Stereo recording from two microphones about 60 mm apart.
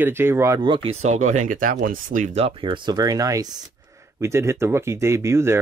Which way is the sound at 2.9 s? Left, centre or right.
Right.